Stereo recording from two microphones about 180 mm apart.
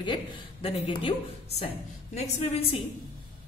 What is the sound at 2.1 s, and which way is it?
Speech, 35° left (ahead or behind).